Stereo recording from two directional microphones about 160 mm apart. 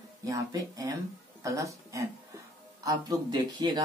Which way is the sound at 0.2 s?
20° right (ahead or behind).